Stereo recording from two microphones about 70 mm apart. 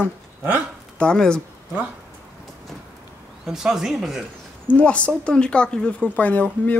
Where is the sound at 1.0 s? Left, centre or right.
Centre.